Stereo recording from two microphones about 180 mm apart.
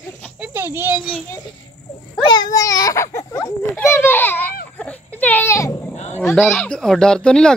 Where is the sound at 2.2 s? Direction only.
20° left (ahead or behind).